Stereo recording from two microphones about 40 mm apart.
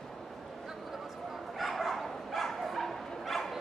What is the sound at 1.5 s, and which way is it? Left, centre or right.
Bow-wow, centre.